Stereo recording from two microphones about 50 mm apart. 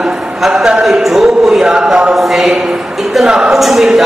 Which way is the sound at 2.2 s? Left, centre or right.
Centre.